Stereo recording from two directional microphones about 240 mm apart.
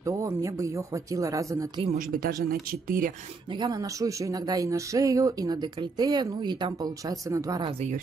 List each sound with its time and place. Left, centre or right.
0.0 s speech: centre
1.9 s speech: right
3.5 s speech: centre